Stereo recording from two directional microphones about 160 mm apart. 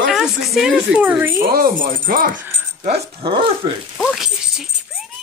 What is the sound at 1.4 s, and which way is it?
Speech, 65° right (ahead or behind).